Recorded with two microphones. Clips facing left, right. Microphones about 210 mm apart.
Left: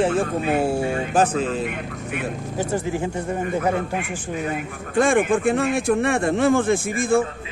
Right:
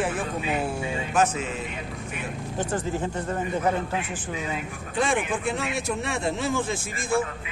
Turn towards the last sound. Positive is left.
turn(degrees=55)  # may be behind; listen again after turning